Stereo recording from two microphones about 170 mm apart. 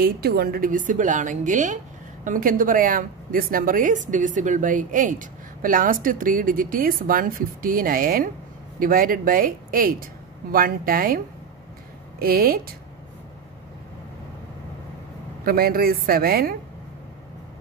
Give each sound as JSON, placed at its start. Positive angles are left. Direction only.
{"t": 0.0, "sound": "a woman's voice", "side_deg": -65}
{"t": 12.2, "sound": "speech", "side_deg": -60}
{"t": 15.4, "sound": "speech", "side_deg": -60}